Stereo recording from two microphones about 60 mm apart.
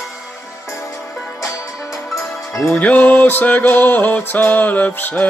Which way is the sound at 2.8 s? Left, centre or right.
Left.